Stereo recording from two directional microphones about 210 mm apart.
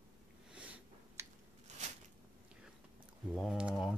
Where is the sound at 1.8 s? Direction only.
35° right (ahead or behind).